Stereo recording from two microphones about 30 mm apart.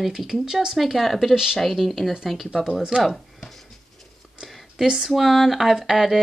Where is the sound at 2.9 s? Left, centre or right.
Right.